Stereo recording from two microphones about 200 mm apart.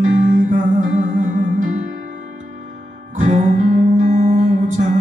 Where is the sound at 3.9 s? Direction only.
40° right (ahead or behind).